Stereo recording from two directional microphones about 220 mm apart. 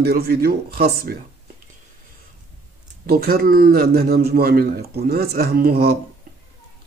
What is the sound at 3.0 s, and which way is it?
A man's voice, 45° right (ahead or behind).